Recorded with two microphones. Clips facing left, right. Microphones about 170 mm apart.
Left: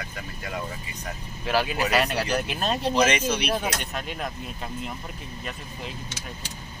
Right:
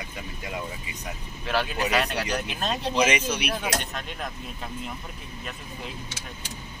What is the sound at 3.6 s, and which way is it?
Speech, 5° left (ahead or behind).